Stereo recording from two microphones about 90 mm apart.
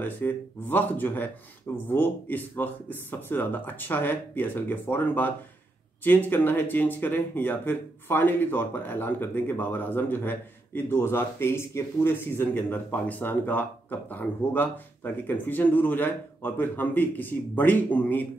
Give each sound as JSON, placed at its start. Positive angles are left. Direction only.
{"t": 0.0, "sound": "speech", "side_deg": 20}